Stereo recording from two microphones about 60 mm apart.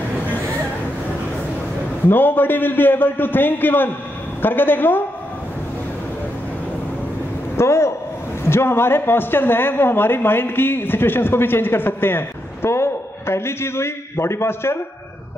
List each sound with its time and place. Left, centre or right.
2.0 s speech: left
7.5 s a man's voice: left